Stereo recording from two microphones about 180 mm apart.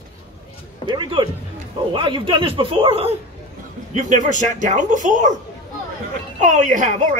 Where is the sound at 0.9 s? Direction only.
25° right (ahead or behind).